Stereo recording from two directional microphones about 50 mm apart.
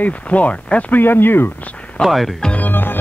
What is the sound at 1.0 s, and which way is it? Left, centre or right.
Speech, left.